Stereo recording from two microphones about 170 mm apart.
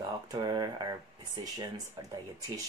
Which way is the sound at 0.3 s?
25° right (ahead or behind).